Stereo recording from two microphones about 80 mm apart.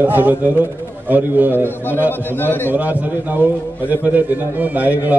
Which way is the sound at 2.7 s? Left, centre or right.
Right.